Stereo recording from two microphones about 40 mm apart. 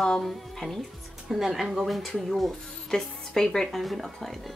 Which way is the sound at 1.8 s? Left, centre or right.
Centre.